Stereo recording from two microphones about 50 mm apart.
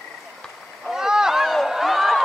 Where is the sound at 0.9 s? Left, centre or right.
Centre.